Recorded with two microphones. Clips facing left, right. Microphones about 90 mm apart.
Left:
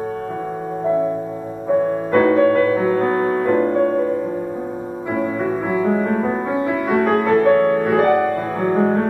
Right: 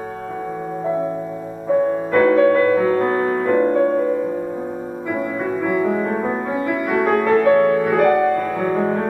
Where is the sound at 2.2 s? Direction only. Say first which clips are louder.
Right 1 dB; 30° left (ahead or behind).